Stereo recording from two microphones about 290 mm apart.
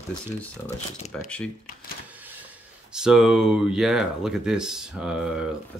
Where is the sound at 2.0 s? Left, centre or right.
Centre.